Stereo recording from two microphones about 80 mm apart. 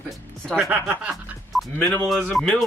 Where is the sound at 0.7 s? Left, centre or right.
Right.